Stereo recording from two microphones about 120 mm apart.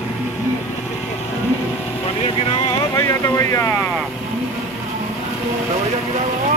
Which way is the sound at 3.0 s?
25° left (ahead or behind).